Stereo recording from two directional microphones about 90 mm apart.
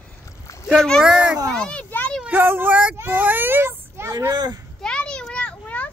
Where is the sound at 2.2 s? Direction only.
20° right (ahead or behind).